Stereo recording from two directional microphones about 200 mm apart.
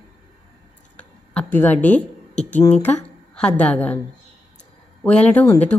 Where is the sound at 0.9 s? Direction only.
10° left (ahead or behind).